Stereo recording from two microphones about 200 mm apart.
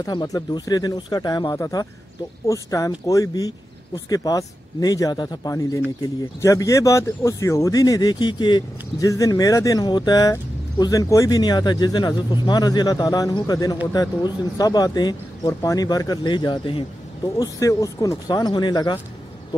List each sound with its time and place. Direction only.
0.0 s speech: 20° left (ahead or behind)